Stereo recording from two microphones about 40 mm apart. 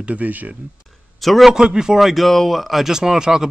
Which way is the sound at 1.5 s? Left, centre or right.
Centre.